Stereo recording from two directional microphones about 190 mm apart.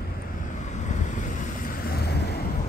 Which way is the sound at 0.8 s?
40° left (ahead or behind).